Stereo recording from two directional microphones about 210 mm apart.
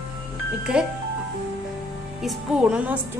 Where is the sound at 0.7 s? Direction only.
5° right (ahead or behind).